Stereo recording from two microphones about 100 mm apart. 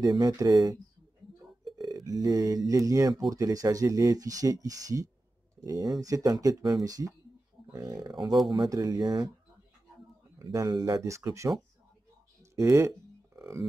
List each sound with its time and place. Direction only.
0.0 s speech: 40° right (ahead or behind)
10.4 s speech: 35° right (ahead or behind)
12.5 s speech: 30° right (ahead or behind)